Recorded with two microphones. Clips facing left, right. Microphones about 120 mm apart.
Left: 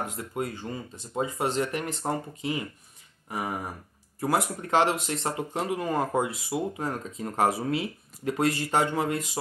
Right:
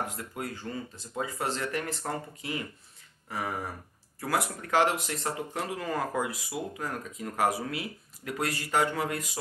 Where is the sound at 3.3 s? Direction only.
15° left (ahead or behind).